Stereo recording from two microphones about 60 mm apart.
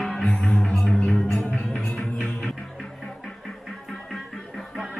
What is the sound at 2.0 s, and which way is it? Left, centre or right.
Music, centre.